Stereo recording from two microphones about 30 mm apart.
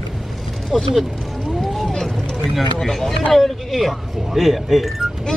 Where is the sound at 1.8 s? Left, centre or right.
Centre.